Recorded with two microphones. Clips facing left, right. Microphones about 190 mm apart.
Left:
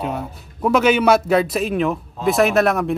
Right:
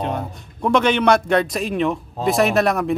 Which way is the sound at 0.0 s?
5° left (ahead or behind).